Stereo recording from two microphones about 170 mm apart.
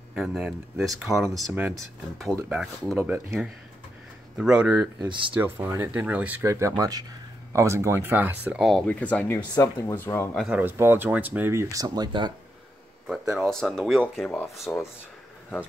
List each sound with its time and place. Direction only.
0.1 s speech: centre (ahead or behind)
5.0 s speech: 30° right (ahead or behind)
5.3 s speech: 10° right (ahead or behind)
8.5 s speech: centre (ahead or behind)
10.3 s speech: 5° right (ahead or behind); by 12.4 s 25° right (ahead or behind)
13.4 s speech: 5° left (ahead or behind)